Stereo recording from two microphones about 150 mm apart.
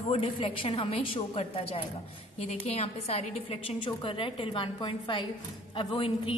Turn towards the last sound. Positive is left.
turn(degrees=35)  # may be behind; listen again after turning